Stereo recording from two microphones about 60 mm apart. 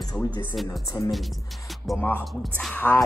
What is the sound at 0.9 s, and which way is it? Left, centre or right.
Speech, left.